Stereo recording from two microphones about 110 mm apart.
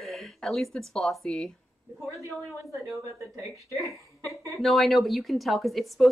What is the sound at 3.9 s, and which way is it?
Speech, 25° left (ahead or behind).